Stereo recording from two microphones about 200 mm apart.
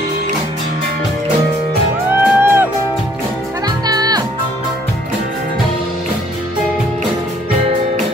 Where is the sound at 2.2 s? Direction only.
10° right (ahead or behind).